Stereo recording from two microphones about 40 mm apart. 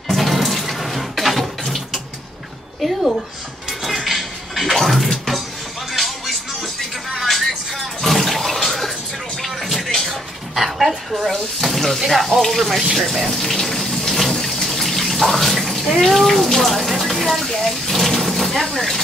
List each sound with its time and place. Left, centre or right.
0.1 s water: centre
2.8 s a sound: centre
3.8 s music: centre
9.4 s a sound: centre
12.1 s speech: centre
12.9 s water tap: centre